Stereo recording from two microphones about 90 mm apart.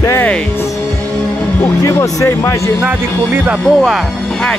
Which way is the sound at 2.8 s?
15° right (ahead or behind).